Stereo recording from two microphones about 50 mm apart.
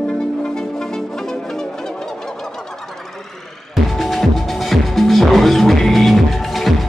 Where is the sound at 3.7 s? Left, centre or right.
Centre.